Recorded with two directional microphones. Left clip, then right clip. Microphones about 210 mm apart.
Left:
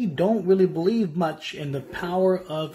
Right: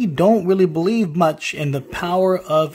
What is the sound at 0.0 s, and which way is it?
Speech, 40° right (ahead or behind).